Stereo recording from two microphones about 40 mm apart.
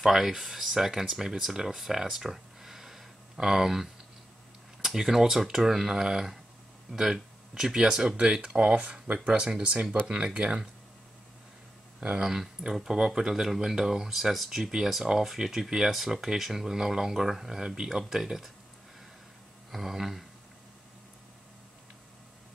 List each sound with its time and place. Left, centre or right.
0.0 s speech: centre
8.2 s speech: right
12.2 s speech: centre
19.7 s speech: centre